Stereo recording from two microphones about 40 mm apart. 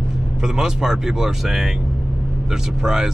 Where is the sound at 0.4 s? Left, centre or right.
Centre.